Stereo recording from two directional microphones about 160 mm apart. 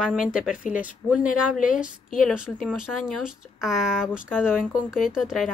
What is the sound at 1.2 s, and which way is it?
Speech, 55° left (ahead or behind).